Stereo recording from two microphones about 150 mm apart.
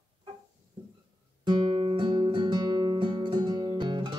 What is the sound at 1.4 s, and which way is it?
Music, 35° right (ahead or behind).